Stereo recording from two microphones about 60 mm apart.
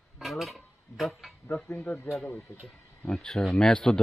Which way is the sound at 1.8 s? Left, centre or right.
Left.